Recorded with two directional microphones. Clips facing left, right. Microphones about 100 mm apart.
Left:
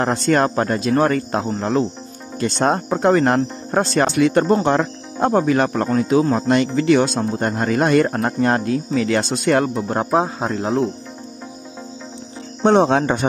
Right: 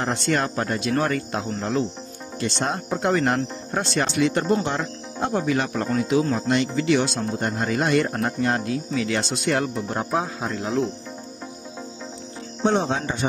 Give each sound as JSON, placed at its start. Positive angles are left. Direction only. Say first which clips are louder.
{"t": 0.0, "sound": "speech", "louder": "left 6 dB", "side_deg": 45}
{"t": 10.1, "sound": "speech", "louder": "left 7 dB", "side_deg": 35}
{"t": 12.6, "sound": "speech", "louder": "left 8 dB", "side_deg": 60}